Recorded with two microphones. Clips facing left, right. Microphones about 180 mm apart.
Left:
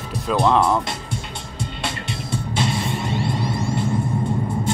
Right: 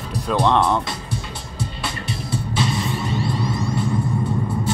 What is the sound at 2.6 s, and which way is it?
Music, 25° left (ahead or behind).